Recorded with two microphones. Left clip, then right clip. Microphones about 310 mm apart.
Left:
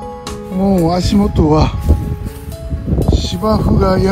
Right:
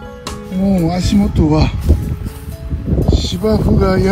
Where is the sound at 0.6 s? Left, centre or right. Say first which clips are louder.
Left 3 dB; centre.